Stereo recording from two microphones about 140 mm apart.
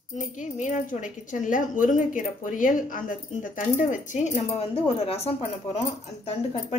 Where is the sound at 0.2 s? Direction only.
65° left (ahead or behind).